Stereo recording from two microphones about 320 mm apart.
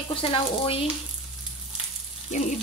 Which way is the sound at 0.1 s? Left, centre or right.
Centre.